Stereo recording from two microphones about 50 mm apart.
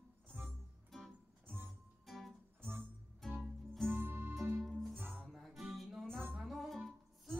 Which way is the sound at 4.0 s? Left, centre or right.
Right.